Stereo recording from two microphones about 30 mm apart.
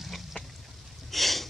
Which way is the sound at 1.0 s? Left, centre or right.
Centre.